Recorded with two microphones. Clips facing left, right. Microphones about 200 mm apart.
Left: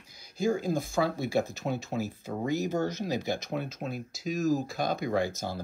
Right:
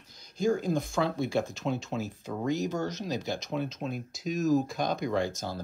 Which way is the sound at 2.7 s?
55° left (ahead or behind).